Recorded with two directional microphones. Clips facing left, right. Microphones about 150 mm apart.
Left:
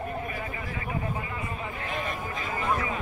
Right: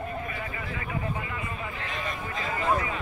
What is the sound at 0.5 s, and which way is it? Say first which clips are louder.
Speech: even; 25° left (ahead or behind).